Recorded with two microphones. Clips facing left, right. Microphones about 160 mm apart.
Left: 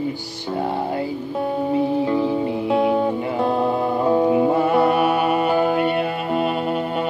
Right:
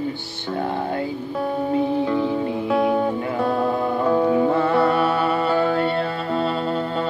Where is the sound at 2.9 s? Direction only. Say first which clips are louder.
Left 1 dB; 20° left (ahead or behind).